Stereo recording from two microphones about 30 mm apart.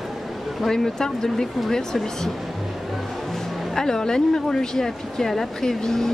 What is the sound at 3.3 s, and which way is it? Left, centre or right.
Speech, centre.